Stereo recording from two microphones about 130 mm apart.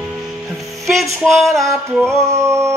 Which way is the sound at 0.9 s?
Centre (ahead or behind).